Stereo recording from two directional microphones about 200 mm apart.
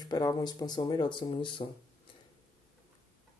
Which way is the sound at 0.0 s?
20° left (ahead or behind).